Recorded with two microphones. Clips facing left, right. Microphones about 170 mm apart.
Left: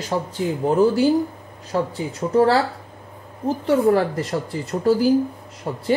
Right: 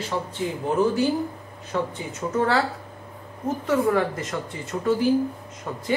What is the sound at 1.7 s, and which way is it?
Speech, 35° left (ahead or behind).